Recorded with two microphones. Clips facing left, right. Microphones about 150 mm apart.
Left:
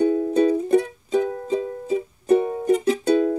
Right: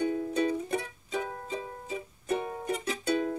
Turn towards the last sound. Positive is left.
turn(degrees=45)  # may be behind; listen again after turning